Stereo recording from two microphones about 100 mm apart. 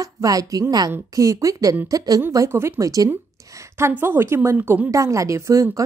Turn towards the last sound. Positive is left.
turn(degrees=-30)  # may be behind; listen again after turning